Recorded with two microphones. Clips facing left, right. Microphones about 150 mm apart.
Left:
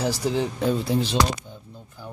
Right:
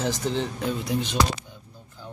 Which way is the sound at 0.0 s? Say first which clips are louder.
Left 2 dB; 10° left (ahead or behind).